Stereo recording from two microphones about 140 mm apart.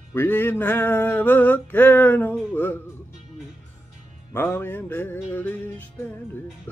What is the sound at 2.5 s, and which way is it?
Music, 15° left (ahead or behind).